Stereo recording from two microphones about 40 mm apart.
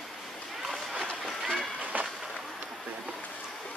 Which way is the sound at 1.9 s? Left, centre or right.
Right.